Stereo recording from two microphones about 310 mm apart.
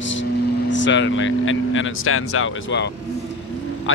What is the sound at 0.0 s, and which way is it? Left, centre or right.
Speech, left.